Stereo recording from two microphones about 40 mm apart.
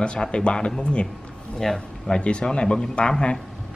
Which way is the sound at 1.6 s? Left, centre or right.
Centre.